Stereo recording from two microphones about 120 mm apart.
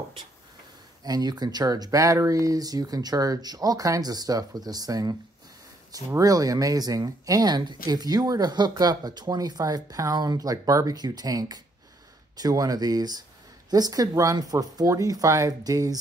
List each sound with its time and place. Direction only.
1.0 s speech: 35° right (ahead or behind)